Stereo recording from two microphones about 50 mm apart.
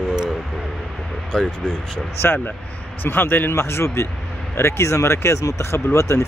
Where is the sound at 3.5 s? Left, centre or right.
Left.